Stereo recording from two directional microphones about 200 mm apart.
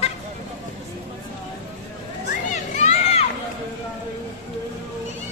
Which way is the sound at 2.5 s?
35° left (ahead or behind).